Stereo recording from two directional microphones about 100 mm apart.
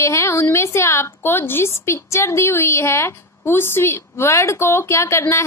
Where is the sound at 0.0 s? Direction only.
30° left (ahead or behind).